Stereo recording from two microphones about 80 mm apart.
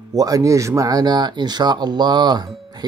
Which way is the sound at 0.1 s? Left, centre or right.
Right.